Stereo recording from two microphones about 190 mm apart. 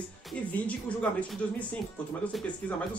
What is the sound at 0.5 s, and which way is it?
Speech, 5° left (ahead or behind).